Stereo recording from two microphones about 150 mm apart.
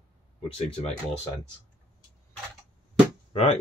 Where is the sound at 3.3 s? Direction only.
40° left (ahead or behind).